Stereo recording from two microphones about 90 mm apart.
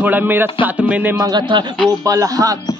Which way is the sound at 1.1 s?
45° right (ahead or behind).